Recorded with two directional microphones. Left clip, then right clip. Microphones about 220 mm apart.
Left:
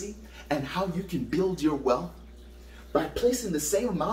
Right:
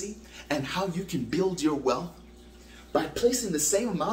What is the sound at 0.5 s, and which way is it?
Speech, 20° right (ahead or behind).